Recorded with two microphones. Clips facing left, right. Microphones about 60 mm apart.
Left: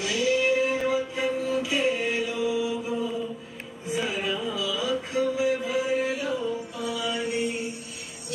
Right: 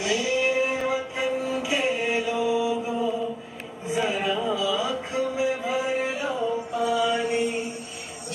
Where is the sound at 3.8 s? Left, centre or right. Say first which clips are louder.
Right 3 dB; right.